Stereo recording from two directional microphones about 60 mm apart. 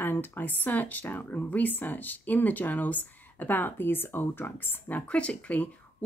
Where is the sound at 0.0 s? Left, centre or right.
Left.